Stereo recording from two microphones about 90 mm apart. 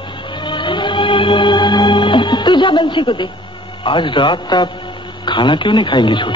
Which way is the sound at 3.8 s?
65° left (ahead or behind).